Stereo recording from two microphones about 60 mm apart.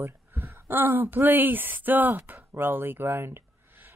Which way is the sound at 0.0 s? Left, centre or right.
Right.